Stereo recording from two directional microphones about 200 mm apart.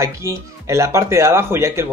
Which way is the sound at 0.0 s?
15° right (ahead or behind).